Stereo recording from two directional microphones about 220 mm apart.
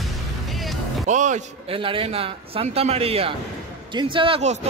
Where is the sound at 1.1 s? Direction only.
35° right (ahead or behind).